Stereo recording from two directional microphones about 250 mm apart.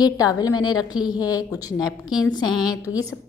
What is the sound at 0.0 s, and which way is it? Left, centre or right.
A woman's voice, centre.